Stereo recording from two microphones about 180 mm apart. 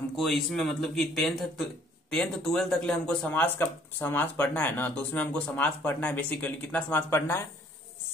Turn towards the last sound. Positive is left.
turn(degrees=10)  # may be behind; listen again after turning